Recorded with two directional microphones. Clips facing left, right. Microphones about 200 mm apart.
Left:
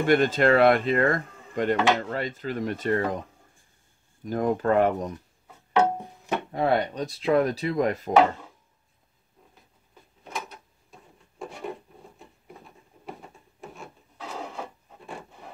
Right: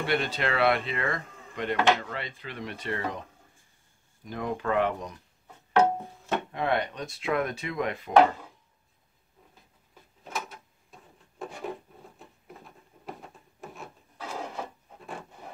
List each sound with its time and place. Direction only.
0.0 s speech: 45° left (ahead or behind)
4.2 s speech: 45° left (ahead or behind)
5.9 s music: 15° left (ahead or behind)
6.5 s speech: 35° left (ahead or behind)
10.2 s wood: centre (ahead or behind)